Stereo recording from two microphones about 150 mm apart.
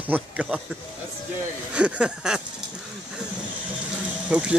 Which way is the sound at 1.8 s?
5° right (ahead or behind).